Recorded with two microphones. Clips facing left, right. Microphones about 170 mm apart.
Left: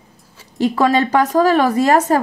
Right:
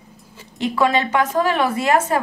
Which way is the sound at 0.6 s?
40° left (ahead or behind).